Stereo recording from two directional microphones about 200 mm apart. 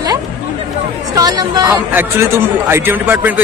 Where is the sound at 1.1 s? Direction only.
20° right (ahead or behind).